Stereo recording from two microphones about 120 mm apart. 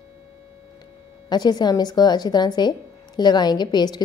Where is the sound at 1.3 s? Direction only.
35° left (ahead or behind).